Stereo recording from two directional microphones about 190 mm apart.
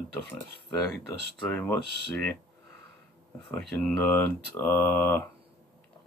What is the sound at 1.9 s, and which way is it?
Speech, 60° right (ahead or behind).